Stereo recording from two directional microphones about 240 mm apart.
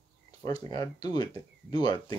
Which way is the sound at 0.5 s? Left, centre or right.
Centre.